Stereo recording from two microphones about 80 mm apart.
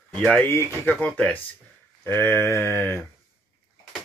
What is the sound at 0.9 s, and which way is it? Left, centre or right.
Speech, centre.